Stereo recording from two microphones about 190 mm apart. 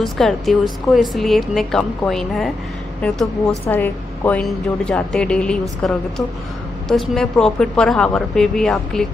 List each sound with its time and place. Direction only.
0.0 s a woman's voice: centre (ahead or behind)